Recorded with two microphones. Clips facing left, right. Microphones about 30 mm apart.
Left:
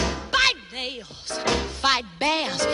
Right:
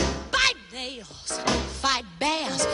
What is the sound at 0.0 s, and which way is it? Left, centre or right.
Music, centre.